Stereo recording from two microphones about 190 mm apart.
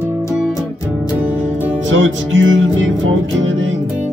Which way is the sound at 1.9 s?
90° right.